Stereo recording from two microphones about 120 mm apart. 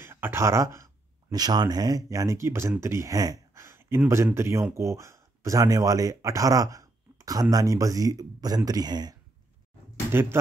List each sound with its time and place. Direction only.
0.0 s speech: 20° right (ahead or behind)
1.3 s speech: 35° right (ahead or behind)
10.4 s speech: 20° right (ahead or behind)